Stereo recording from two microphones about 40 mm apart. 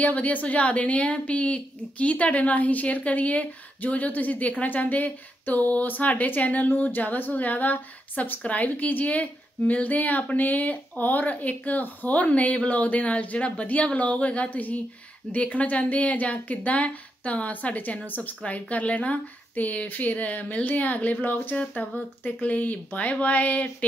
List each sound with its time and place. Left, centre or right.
0.0 s a woman's voice: left
8.4 s a woman's voice: left
21.5 s a woman's voice: left